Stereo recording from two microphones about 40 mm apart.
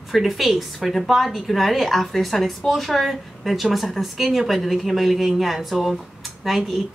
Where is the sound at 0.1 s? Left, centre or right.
Centre.